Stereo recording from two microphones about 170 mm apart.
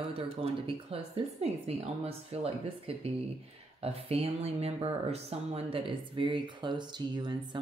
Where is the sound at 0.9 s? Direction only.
35° right (ahead or behind).